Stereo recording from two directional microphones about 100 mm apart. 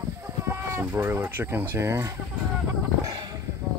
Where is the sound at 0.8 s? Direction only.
20° right (ahead or behind).